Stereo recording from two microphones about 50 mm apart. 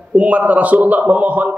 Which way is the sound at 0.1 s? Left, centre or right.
Right.